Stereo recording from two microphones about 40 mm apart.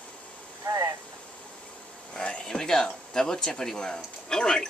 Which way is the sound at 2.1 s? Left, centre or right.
Left.